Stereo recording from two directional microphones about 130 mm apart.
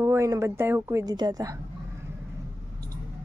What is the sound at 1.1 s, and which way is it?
Speech, 30° right (ahead or behind).